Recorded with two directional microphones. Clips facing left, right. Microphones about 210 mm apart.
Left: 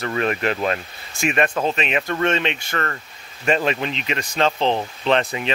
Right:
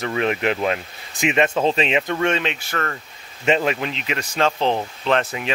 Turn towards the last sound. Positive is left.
turn(degrees=0)  # may be behind; listen again after turning